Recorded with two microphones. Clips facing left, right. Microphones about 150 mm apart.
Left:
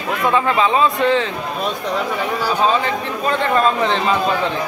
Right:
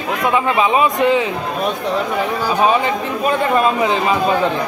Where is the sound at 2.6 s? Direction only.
15° right (ahead or behind).